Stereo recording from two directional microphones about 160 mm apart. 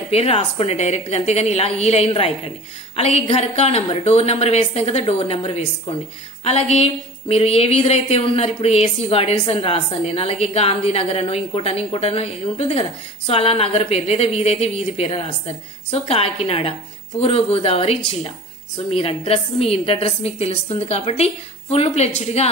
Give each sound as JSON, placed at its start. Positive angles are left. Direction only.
{"t": 0.1, "sound": "a woman's voice", "side_deg": 40}